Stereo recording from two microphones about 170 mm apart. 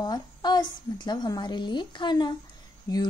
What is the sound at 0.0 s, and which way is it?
A woman's voice, 25° left (ahead or behind).